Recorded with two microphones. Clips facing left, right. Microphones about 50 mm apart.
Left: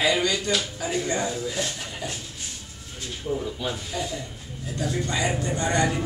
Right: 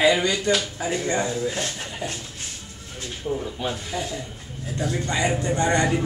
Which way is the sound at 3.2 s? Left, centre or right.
Centre.